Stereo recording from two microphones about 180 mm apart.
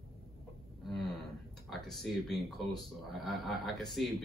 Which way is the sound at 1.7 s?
Centre (ahead or behind).